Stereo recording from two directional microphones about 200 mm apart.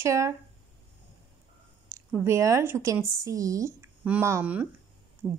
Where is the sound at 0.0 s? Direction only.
15° right (ahead or behind).